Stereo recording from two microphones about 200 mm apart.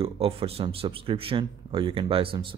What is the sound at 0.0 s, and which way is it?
Speech, 30° right (ahead or behind).